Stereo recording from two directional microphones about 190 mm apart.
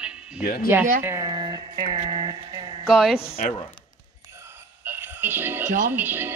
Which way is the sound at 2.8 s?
Centre (ahead or behind).